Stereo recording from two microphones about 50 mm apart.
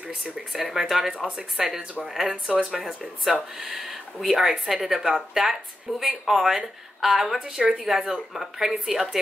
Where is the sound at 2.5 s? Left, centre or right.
Centre.